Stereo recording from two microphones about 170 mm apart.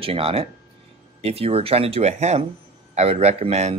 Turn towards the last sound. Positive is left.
turn(degrees=-40)  # may be behind; listen again after turning